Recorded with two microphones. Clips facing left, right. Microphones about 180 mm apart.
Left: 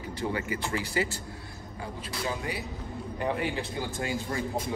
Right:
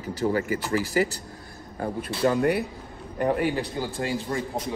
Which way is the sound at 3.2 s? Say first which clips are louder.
Right 7 dB; 45° right (ahead or behind).